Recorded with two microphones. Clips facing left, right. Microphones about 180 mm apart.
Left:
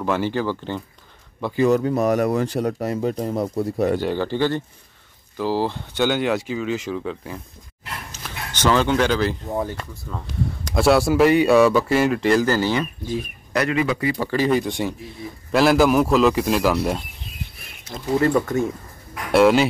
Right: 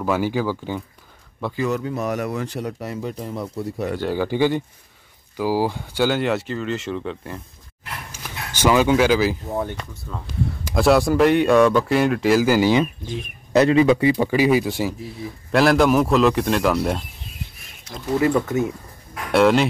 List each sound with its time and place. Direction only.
0.0 s a man's voice: 10° right (ahead or behind)
1.8 s speech: 40° left (ahead or behind)
4.1 s a man's voice: 10° right (ahead or behind)
8.1 s speech: 10° right (ahead or behind)
9.5 s a man's voice: 5° left (ahead or behind); by 12.8 s 15° right (ahead or behind)
13.0 s a man's voice: 5° left (ahead or behind)
13.5 s a man's voice: 25° right (ahead or behind); by 19.7 s centre (ahead or behind)